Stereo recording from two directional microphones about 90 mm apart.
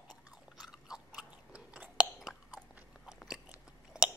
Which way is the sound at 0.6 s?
5° right (ahead or behind).